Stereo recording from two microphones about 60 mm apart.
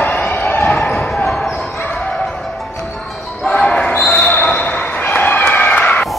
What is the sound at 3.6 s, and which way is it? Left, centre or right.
Basketball bounce, centre.